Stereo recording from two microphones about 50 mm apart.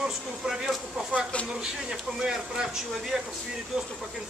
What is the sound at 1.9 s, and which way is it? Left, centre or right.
Speech, centre.